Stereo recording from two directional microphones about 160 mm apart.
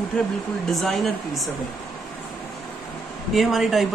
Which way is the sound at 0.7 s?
Centre (ahead or behind).